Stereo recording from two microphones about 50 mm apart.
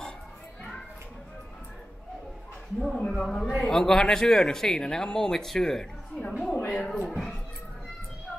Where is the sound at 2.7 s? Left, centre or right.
Centre.